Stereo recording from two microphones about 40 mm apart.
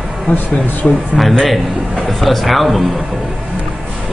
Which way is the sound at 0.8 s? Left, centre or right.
Centre.